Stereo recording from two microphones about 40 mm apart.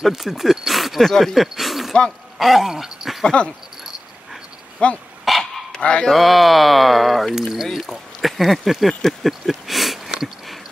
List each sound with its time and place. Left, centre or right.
0.1 s speech: centre
3.3 s dog: left
4.8 s speech: left
5.3 s dog: centre
5.8 s fowl: left
6.1 s a sound: centre